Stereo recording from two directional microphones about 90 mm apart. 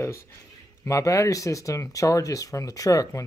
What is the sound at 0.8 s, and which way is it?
Speech, 35° left (ahead or behind).